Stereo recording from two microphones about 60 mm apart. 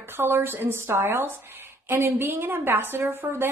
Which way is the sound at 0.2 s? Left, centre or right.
Right.